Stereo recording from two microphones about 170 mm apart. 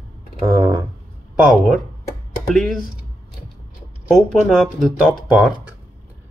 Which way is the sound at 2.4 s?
5° left (ahead or behind).